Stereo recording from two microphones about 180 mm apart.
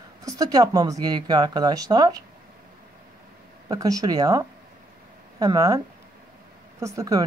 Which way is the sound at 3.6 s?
20° right (ahead or behind).